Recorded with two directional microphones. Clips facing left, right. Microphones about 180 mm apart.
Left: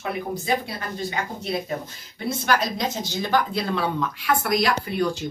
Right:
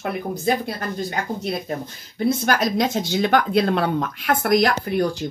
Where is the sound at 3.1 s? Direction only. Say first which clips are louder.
Right 5 dB; 65° right (ahead or behind).